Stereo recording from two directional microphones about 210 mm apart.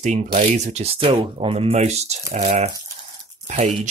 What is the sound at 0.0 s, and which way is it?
Speech, 35° right (ahead or behind).